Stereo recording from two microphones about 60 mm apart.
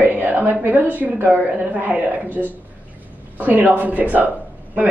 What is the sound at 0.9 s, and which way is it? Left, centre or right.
Speech, right.